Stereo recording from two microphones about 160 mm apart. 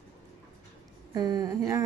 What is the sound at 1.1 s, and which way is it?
Speech, 25° right (ahead or behind).